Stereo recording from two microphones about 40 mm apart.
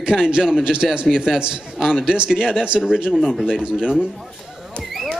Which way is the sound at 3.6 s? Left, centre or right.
Right.